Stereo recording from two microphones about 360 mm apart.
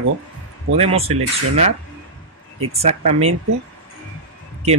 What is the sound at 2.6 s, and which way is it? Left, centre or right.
Speech, centre.